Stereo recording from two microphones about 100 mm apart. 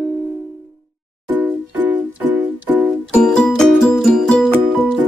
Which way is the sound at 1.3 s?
15° right (ahead or behind).